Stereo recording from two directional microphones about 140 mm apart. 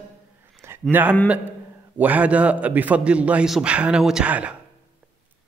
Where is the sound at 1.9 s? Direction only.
10° right (ahead or behind).